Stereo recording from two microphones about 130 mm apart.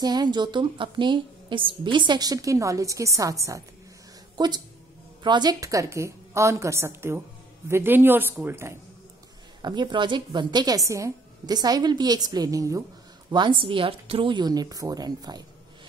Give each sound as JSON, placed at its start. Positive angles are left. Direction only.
{"t": 0.0, "sound": "a woman's voice", "side_deg": -30}
{"t": 5.2, "sound": "a woman's voice", "side_deg": -35}
{"t": 9.6, "sound": "a woman's voice", "side_deg": -35}
{"t": 13.3, "sound": "a woman's voice", "side_deg": -40}